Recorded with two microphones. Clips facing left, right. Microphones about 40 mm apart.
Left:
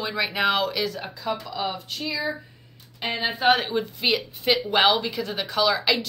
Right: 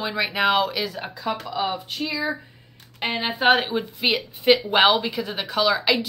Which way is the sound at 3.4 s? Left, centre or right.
Right.